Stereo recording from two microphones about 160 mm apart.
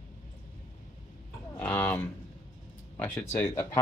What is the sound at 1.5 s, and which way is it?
Speech, 15° left (ahead or behind).